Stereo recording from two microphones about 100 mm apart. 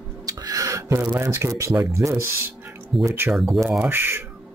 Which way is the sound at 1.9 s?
30° right (ahead or behind).